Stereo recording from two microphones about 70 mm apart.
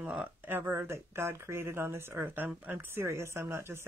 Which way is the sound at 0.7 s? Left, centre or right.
Right.